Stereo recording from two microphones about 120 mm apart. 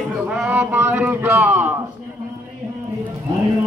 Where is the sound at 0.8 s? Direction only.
15° right (ahead or behind).